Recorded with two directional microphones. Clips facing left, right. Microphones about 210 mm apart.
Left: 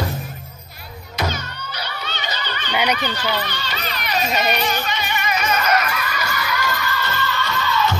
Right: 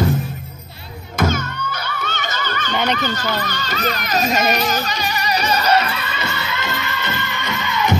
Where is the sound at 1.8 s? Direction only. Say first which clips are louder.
Right 3 dB; 50° right (ahead or behind).